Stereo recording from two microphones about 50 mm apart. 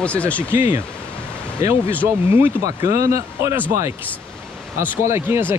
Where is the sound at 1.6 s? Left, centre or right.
Right.